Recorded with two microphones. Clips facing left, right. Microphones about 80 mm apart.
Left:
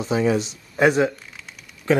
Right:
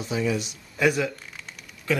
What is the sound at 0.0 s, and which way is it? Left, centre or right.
Speech, left.